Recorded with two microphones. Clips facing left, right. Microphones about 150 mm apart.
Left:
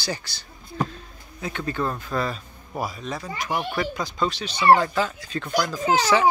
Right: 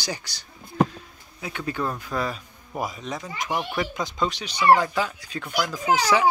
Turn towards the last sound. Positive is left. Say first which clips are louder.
# left 1 dB
turn(degrees=-10)  # may be behind; listen again after turning